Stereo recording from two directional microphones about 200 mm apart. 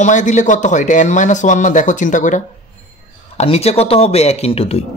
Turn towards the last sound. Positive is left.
turn(degrees=30)  # may be behind; listen again after turning